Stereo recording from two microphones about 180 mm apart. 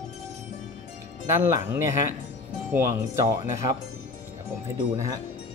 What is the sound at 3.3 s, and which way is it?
Speech, 25° right (ahead or behind).